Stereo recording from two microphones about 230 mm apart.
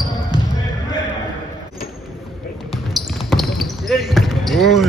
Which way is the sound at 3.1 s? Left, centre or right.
Centre.